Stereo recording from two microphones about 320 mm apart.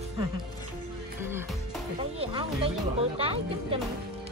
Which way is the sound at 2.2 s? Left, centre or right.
Centre.